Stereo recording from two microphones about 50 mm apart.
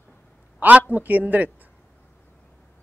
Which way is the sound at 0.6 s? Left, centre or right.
Right.